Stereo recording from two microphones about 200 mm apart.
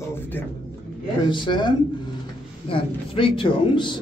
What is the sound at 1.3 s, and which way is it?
A man's voice, 25° left (ahead or behind).